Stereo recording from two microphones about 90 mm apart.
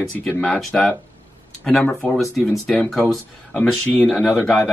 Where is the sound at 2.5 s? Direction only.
5° left (ahead or behind).